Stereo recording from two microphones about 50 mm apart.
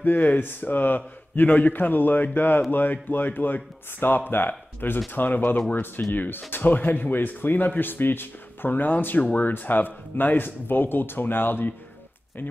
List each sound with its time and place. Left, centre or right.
0.0 s speech: left